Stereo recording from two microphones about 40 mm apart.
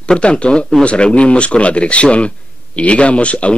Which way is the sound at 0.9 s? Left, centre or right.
Left.